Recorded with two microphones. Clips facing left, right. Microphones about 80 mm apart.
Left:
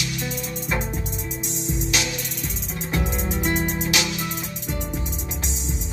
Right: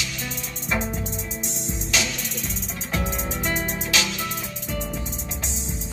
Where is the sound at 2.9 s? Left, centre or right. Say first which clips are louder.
Left 2 dB; centre.